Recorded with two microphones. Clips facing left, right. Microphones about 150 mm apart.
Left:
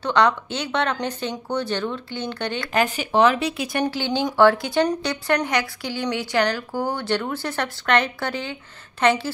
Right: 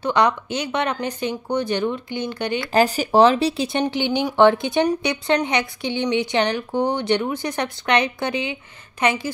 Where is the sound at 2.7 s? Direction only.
35° right (ahead or behind).